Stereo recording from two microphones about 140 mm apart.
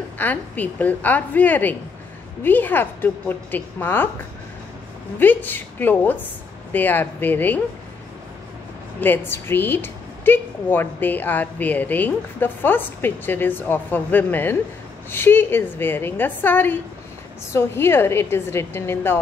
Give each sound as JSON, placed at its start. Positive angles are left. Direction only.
{"t": 0.2, "sound": "a woman's voice", "side_deg": 10}
{"t": 5.2, "sound": "a woman's voice", "side_deg": 15}
{"t": 9.0, "sound": "a woman's voice", "side_deg": 15}